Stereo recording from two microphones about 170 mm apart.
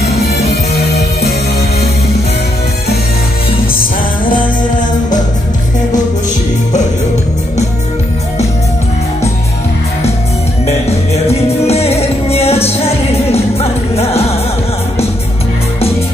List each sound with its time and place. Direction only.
0.0 s music: 70° left (ahead or behind)
10.9 s music: 40° left (ahead or behind)